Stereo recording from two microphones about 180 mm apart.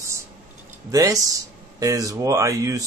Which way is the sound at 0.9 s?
20° right (ahead or behind).